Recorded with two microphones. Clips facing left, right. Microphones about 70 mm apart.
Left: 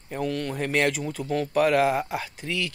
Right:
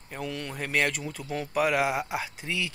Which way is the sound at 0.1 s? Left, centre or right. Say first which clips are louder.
Left 7 dB; centre.